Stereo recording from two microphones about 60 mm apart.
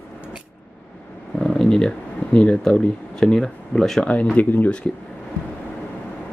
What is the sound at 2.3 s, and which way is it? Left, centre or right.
Speech, centre.